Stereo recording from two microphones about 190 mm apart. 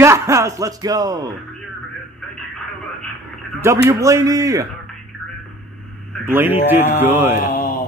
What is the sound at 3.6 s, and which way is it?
A man's voice, 15° right (ahead or behind).